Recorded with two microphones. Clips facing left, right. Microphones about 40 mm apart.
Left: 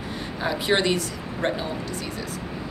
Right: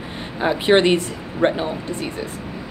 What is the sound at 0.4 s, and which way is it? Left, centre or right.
Speech, right.